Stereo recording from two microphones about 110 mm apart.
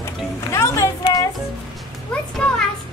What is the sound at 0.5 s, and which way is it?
Music, 30° left (ahead or behind).